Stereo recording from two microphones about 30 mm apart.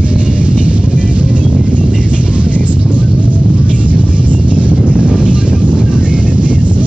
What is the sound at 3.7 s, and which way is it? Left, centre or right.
Music, right.